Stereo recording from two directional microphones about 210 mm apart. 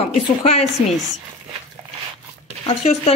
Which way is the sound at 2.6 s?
30° left (ahead or behind).